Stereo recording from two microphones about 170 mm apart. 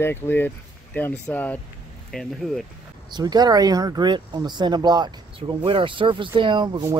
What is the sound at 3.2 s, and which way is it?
Speech, 25° right (ahead or behind).